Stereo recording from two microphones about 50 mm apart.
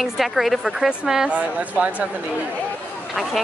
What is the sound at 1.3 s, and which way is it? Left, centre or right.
Speech, right.